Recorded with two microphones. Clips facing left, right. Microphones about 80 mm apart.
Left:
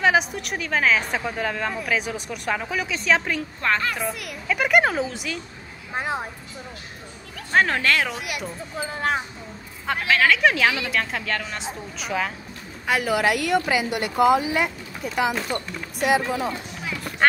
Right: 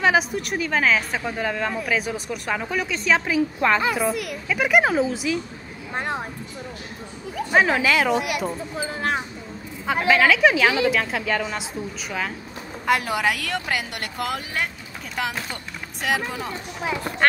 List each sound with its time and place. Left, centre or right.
0.0 s a woman's voice: centre
7.3 s a woman's voice: centre
16.8 s speech: right